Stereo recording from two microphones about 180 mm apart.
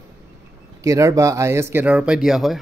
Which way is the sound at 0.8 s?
20° right (ahead or behind).